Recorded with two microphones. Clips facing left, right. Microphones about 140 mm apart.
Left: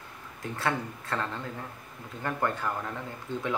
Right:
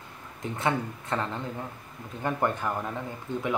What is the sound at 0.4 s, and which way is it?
Speech, 20° right (ahead or behind).